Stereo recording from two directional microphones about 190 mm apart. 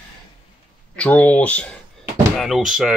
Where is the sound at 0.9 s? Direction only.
5° left (ahead or behind).